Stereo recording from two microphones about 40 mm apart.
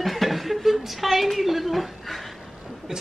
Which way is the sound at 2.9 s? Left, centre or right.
Centre.